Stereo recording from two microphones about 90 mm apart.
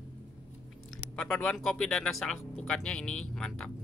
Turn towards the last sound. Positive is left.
turn(degrees=5)  # may be behind; listen again after turning